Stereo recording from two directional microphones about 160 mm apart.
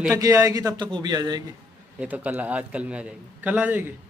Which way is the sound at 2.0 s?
10° right (ahead or behind).